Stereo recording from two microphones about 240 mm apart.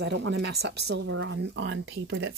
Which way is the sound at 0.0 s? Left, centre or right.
Right.